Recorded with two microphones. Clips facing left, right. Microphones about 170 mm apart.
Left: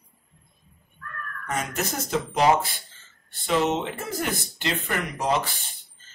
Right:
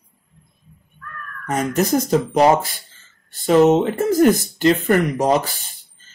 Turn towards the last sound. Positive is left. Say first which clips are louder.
# right 9 dB
turn(degrees=-45)  # may be behind; listen again after turning